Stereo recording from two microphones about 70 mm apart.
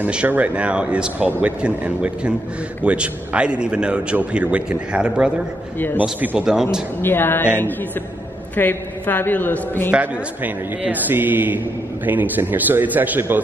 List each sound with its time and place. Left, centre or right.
0.0 s a man's voice: centre
6.3 s a man's voice: centre
7.0 s a woman's voice: left
9.9 s a man's voice: right